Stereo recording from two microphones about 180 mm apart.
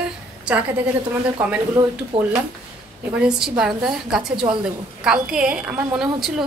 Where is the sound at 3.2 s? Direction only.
5° right (ahead or behind).